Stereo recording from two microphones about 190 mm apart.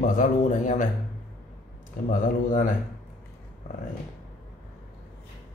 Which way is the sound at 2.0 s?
45° left (ahead or behind).